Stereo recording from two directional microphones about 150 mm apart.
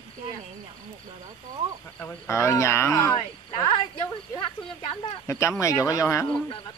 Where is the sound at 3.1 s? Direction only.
35° left (ahead or behind).